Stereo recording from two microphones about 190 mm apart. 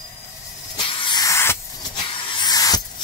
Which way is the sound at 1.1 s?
20° left (ahead or behind).